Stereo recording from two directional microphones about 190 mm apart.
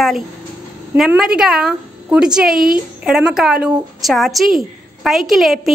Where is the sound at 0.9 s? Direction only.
5° right (ahead or behind).